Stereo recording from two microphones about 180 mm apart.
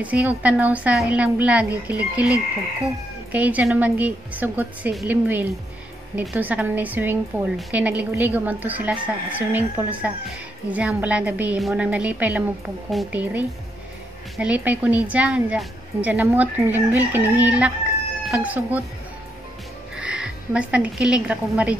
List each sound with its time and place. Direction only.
0.0 s a woman's voice: 10° right (ahead or behind)
20.0 s a woman's voice: 5° right (ahead or behind)